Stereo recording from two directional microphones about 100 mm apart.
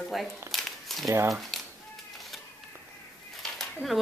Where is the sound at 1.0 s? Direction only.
35° right (ahead or behind).